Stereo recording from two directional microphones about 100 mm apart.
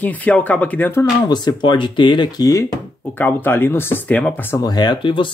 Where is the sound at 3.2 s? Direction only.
20° left (ahead or behind).